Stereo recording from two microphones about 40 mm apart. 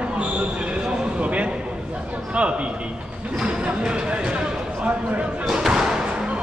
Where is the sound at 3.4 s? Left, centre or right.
Right.